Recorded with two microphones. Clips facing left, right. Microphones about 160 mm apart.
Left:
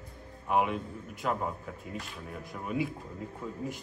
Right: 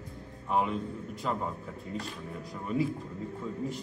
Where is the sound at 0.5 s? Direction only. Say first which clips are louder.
Left 1 dB; 10° left (ahead or behind).